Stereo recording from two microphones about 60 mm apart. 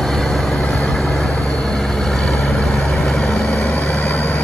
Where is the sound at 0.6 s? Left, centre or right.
Centre.